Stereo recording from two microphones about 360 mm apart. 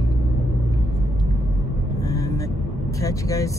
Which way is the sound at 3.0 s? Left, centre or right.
Centre.